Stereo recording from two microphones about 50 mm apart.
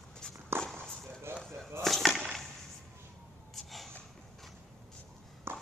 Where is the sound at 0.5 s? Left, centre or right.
Right.